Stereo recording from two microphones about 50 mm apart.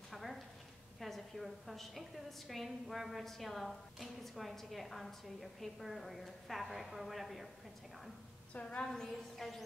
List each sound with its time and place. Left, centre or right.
0.1 s a sound: centre
0.9 s a woman's voice: centre
8.5 s a woman's voice: left
8.9 s a woman's voice: centre